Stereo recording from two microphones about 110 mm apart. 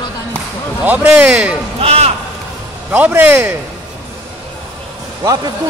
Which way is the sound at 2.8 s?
15° right (ahead or behind).